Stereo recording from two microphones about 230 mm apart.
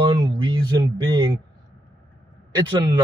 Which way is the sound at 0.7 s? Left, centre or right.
Centre.